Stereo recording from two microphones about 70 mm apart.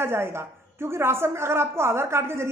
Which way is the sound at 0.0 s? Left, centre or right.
Right.